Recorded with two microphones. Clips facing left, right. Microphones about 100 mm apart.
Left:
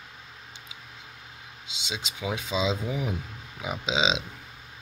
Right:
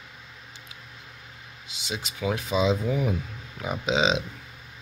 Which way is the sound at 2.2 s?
10° left (ahead or behind).